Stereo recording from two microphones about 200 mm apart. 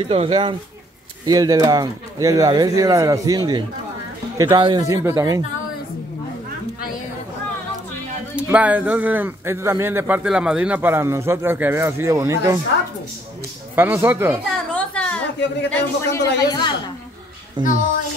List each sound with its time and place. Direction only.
0.0 s a man's voice: 25° right (ahead or behind)
8.4 s a man's voice: 5° right (ahead or behind)
13.7 s a man's voice: 10° right (ahead or behind)
14.7 s a sound: 5° left (ahead or behind)
15.7 s a woman's voice: 15° left (ahead or behind)
17.6 s speech: 25° right (ahead or behind)